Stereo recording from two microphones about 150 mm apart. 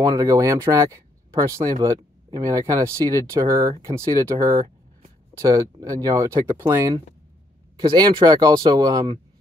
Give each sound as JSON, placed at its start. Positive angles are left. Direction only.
{"t": 0.0, "sound": "speech", "side_deg": -25}